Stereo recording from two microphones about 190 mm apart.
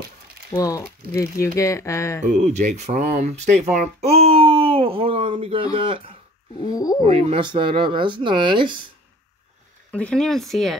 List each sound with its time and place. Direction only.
0.5 s speech: 15° left (ahead or behind)
2.2 s speech: 40° right (ahead or behind)
6.6 s speech: 20° left (ahead or behind)
7.0 s speech: 30° right (ahead or behind)
9.8 s speech: 5° left (ahead or behind)